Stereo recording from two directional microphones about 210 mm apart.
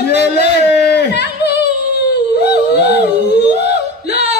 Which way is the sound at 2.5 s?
50° left (ahead or behind).